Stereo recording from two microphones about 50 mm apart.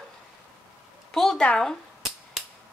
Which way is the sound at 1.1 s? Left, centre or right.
Centre.